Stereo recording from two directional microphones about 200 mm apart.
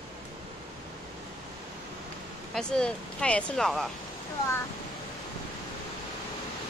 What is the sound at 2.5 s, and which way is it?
Speech, 5° left (ahead or behind).